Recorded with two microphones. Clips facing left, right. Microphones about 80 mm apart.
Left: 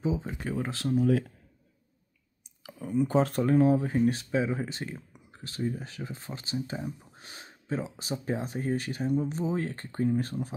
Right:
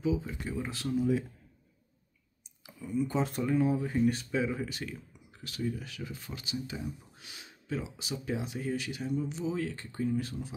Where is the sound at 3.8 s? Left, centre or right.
Left.